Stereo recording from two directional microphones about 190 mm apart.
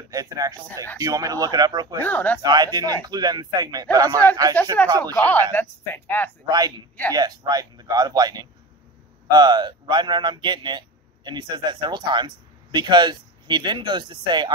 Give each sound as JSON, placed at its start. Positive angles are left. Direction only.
{"t": 0.1, "sound": "a man's voice", "side_deg": -20}
{"t": 2.0, "sound": "speech", "side_deg": 10}
{"t": 2.4, "sound": "a man's voice", "side_deg": -20}
{"t": 5.1, "sound": "speech", "side_deg": 10}
{"t": 6.4, "sound": "a man's voice", "side_deg": -20}